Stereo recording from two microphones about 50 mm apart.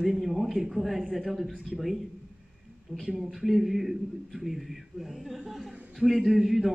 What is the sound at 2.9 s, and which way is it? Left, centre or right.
Speech, right.